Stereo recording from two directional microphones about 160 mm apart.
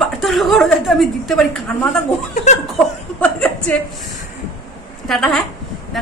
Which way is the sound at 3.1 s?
10° left (ahead or behind).